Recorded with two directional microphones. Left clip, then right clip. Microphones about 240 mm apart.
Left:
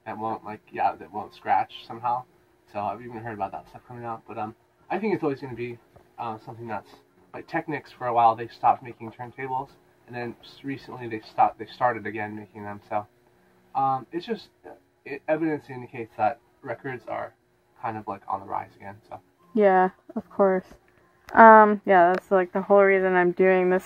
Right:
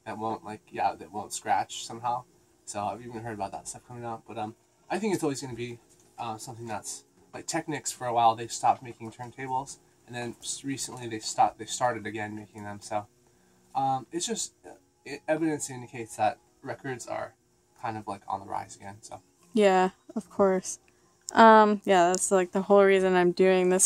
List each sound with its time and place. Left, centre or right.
0.0 s speech: right
23.3 s speech: right